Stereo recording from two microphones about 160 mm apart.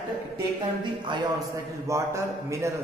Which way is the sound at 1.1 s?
30° right (ahead or behind).